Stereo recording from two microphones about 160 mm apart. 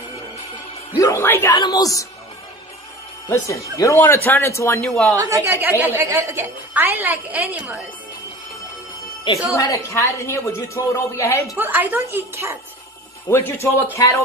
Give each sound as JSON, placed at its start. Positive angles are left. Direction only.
{"t": 0.9, "sound": "a woman's voice", "side_deg": 15}
{"t": 3.4, "sound": "a woman's voice", "side_deg": 20}
{"t": 4.8, "sound": "a woman's voice", "side_deg": 5}
{"t": 5.2, "sound": "a woman's voice", "side_deg": -15}
{"t": 9.5, "sound": "a woman's voice", "side_deg": 20}
{"t": 11.5, "sound": "a woman's voice", "side_deg": -10}
{"t": 13.3, "sound": "a woman's voice", "side_deg": 15}